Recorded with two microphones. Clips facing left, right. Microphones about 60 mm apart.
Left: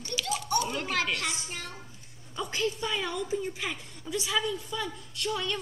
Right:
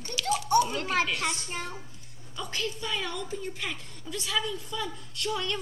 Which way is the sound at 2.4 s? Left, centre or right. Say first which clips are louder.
Left 3 dB; centre.